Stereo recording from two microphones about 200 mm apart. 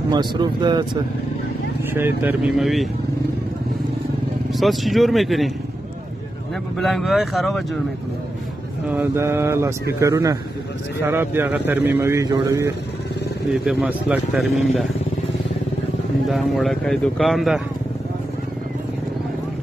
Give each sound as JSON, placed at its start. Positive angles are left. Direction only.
{"t": 0.1, "sound": "speech", "side_deg": -20}
{"t": 2.0, "sound": "speech", "side_deg": -10}
{"t": 4.6, "sound": "speech", "side_deg": 0}
{"t": 6.8, "sound": "speech", "side_deg": 0}
{"t": 8.8, "sound": "speech", "side_deg": -10}
{"t": 13.5, "sound": "speech", "side_deg": -5}
{"t": 16.3, "sound": "speech", "side_deg": 0}